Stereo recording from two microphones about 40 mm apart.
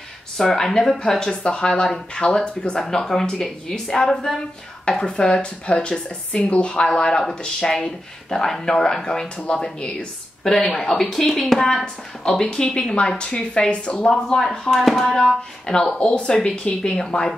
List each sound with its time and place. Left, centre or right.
0.4 s speech: centre
1.2 s speech: centre
2.8 s speech: centre
10.4 s speech: centre
11.8 s speech: left
14.8 s speech: centre
15.1 s speech: centre